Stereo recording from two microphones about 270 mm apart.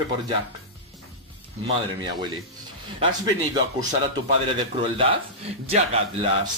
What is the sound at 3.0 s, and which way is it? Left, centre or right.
A man's voice, centre.